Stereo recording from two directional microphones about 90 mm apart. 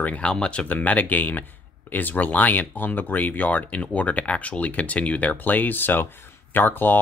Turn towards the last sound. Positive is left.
turn(degrees=20)  # may be behind; listen again after turning